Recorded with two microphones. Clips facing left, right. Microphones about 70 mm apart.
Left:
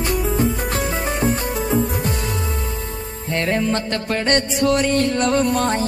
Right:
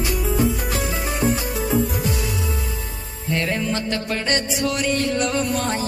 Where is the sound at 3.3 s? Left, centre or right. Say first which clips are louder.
Left 4 dB; centre.